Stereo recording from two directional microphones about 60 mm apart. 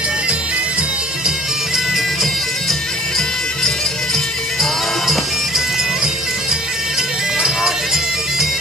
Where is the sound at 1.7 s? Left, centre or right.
Centre.